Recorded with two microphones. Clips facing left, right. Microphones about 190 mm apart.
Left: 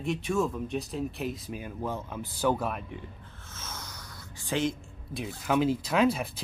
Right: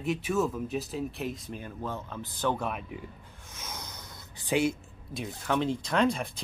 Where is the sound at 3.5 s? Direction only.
15° right (ahead or behind).